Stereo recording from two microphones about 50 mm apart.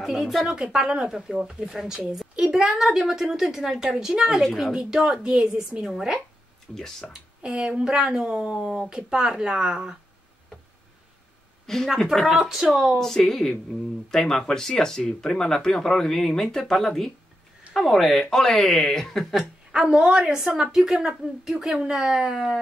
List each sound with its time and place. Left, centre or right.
0.0 s a woman's voice: centre
0.5 s a woman's voice: centre
5.9 s a woman's voice: centre
6.7 s speech: centre
7.1 s a woman's voice: centre
11.6 s speech: centre
12.3 s a woman's voice: centre
13.0 s a woman's voice: centre
19.7 s a woman's voice: centre